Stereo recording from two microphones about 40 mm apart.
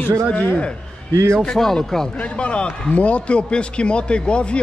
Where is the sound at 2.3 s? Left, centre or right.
Left.